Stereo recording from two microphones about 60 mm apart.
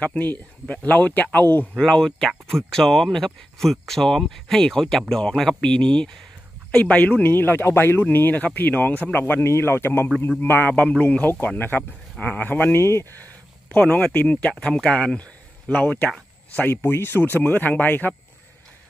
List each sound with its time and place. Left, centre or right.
0.0 s speech: left
1.8 s speech: centre
7.2 s speech: left
9.2 s speech: left
10.7 s speech: left
16.7 s speech: left